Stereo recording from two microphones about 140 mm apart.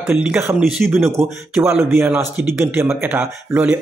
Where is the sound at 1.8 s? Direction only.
15° right (ahead or behind).